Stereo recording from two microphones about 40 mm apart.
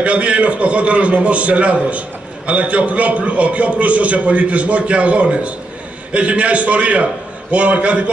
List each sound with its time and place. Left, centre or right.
0.0 s a man's voice: right